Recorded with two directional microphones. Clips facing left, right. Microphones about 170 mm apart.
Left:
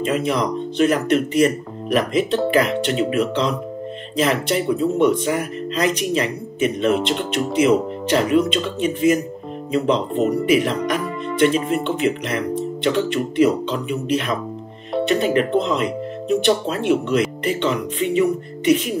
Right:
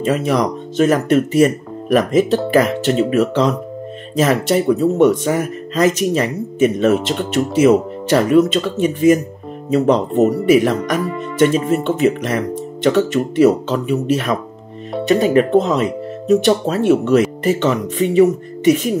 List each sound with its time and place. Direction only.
0.1 s speech: 40° right (ahead or behind)